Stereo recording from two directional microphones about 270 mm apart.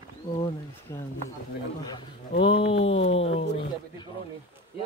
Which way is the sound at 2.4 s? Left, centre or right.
Centre.